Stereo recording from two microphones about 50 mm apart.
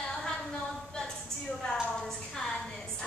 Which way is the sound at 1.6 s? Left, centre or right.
Centre.